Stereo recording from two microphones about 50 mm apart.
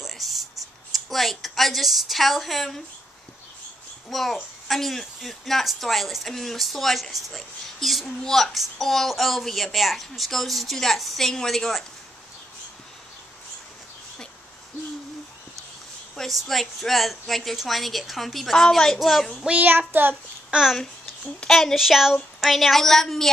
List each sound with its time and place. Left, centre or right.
0.0 s writing: centre
0.9 s a child's voice: centre
4.1 s a child's voice: centre
16.2 s a child's voice: centre
19.9 s a child's voice: right
21.5 s a child's voice: centre